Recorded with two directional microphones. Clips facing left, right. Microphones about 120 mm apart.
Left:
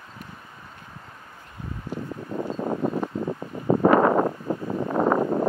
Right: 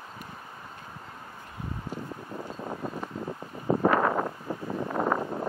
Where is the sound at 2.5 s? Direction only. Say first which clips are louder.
Left 10 dB; 80° left.